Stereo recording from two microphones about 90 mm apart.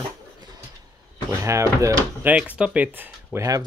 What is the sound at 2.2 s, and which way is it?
Speech, 15° right (ahead or behind).